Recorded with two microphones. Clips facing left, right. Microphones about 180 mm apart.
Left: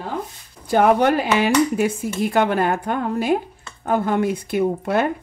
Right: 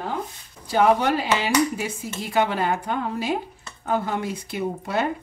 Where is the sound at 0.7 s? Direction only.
55° left (ahead or behind).